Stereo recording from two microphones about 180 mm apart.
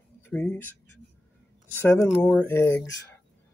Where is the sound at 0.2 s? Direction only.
10° left (ahead or behind).